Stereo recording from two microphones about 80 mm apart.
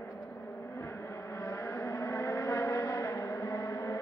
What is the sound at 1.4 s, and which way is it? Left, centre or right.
Vehicle, left.